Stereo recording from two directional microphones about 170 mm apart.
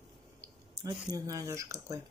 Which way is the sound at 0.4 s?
20° right (ahead or behind).